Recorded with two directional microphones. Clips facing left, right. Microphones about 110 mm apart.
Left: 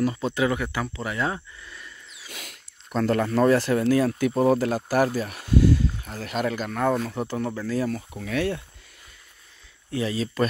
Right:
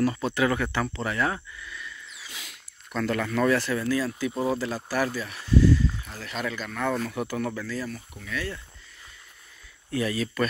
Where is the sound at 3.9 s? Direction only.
50° left (ahead or behind).